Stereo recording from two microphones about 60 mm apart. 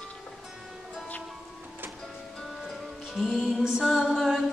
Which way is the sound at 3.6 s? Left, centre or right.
Centre.